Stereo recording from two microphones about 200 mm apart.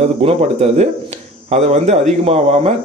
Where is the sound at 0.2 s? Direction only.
35° right (ahead or behind).